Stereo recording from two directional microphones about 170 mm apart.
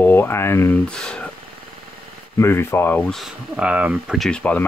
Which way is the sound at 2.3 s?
15° left (ahead or behind).